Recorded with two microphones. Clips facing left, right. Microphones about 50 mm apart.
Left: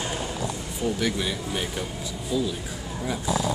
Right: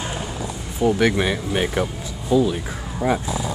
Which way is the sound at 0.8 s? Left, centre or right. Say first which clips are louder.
Right 8 dB; right.